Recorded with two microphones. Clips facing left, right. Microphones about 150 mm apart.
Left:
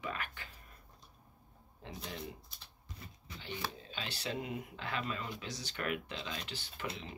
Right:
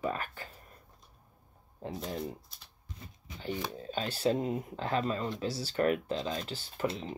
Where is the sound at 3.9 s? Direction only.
40° right (ahead or behind).